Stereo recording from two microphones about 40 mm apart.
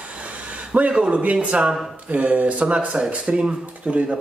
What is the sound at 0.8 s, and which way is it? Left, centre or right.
A man's voice, right.